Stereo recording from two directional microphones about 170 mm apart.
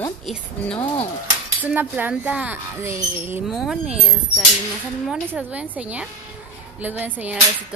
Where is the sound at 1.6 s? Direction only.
10° right (ahead or behind).